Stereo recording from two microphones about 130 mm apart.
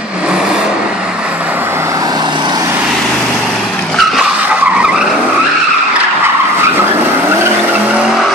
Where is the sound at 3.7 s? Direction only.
5° left (ahead or behind).